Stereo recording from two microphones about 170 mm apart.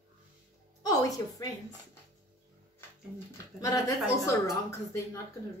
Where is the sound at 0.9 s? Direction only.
20° left (ahead or behind).